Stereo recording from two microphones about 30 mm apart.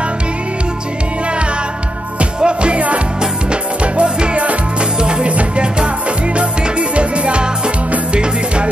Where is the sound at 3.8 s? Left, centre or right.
Right.